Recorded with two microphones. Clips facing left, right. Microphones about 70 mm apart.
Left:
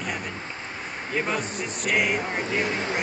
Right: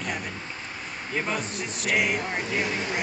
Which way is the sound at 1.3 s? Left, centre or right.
Centre.